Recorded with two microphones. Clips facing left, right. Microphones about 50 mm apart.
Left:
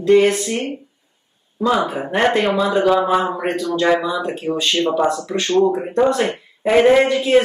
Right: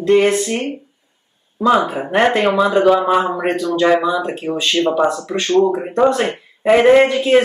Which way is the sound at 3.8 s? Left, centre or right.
Centre.